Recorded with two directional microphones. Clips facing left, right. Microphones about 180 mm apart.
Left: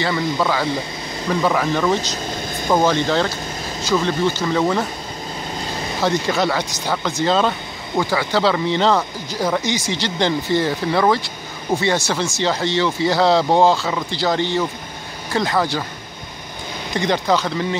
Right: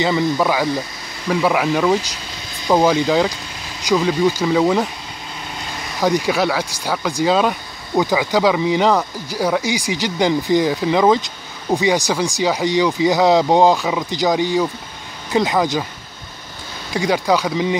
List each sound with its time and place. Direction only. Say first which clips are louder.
0.0 s speech: right 3 dB; 15° right (ahead or behind)
6.0 s speech: right 2 dB; 10° right (ahead or behind)
16.9 s speech: right 1 dB; 10° right (ahead or behind)